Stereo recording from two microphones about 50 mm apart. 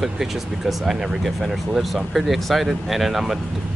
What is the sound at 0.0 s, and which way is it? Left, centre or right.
Speech, centre.